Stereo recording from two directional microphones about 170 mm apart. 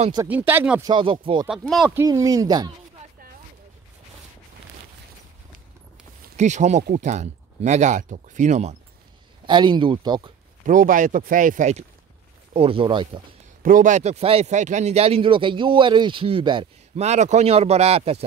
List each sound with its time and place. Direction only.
0.3 s speech: 10° right (ahead or behind)
0.8 s speech: 30° right (ahead or behind)
1.5 s speech: centre (ahead or behind)
2.0 s speech: 20° right (ahead or behind)
6.3 s speech: 45° right (ahead or behind)
9.5 s speech: 25° right (ahead or behind)
10.6 s speech: 50° right (ahead or behind)
12.5 s speech: 35° right (ahead or behind)
13.6 s speech: 55° right (ahead or behind); by 17.0 s 30° right (ahead or behind)
17.0 s speech: 40° right (ahead or behind)